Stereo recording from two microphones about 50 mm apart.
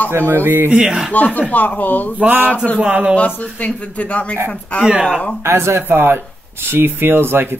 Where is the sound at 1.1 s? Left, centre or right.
Left.